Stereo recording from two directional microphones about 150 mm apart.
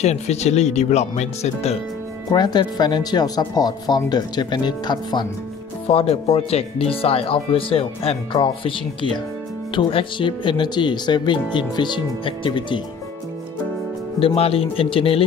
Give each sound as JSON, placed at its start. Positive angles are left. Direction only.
{"t": 0.0, "sound": "speech", "side_deg": 45}
{"t": 2.3, "sound": "speech", "side_deg": 30}
{"t": 5.9, "sound": "speech", "side_deg": 40}
{"t": 9.8, "sound": "speech", "side_deg": 35}
{"t": 14.2, "sound": "speech", "side_deg": 40}